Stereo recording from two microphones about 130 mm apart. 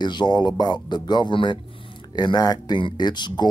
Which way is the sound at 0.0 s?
35° left (ahead or behind).